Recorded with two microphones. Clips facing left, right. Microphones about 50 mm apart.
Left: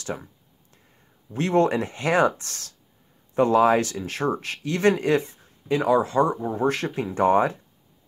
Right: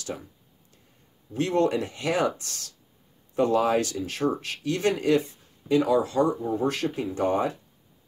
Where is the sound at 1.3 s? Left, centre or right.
Left.